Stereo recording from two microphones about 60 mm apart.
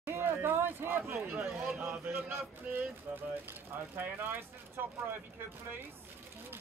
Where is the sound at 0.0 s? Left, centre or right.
Right.